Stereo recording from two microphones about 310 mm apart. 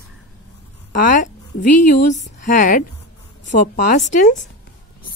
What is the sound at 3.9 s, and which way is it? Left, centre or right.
Speech, left.